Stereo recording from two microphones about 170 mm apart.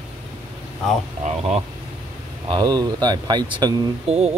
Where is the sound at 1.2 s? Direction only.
40° right (ahead or behind).